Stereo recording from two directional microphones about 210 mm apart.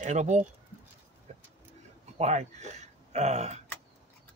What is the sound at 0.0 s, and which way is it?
Speech, 35° right (ahead or behind).